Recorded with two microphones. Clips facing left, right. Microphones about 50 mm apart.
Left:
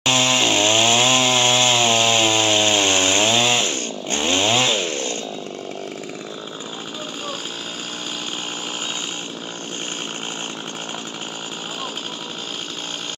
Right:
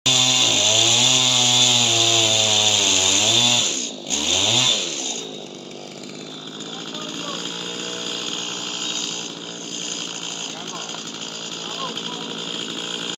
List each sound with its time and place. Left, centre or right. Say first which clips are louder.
0.0 s chainsaw: left 2 dB; left